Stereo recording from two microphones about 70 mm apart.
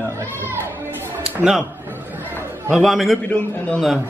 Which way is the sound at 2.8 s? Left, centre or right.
Centre.